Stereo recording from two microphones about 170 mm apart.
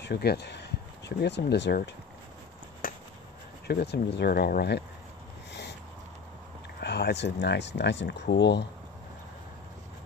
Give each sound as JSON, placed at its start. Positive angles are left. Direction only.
{"t": 0.0, "sound": "speech", "side_deg": 70}
{"t": 2.8, "sound": "finger snapping", "side_deg": 55}
{"t": 3.6, "sound": "speech", "side_deg": 75}
{"t": 5.5, "sound": "a sound", "side_deg": 85}
{"t": 6.8, "sound": "speech", "side_deg": 80}